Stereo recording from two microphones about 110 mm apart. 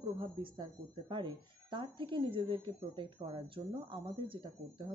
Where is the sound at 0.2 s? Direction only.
50° right (ahead or behind).